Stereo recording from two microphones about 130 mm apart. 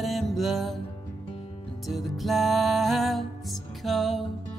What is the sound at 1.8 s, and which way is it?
Music, centre (ahead or behind).